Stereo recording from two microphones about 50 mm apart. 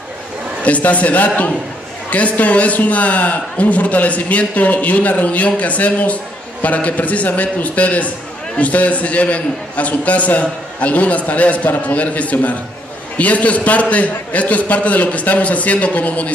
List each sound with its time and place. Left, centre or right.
0.7 s a man's voice: left